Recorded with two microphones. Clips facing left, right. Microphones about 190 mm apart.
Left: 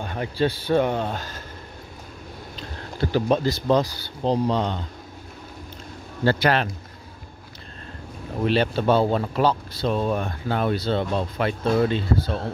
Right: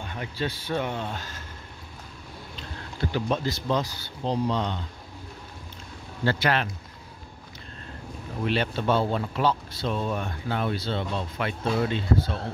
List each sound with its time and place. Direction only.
0.0 s speech: 40° left (ahead or behind)
3.0 s speech: 35° left (ahead or behind)
6.2 s speech: 40° left (ahead or behind)
8.5 s speech: 35° left (ahead or behind)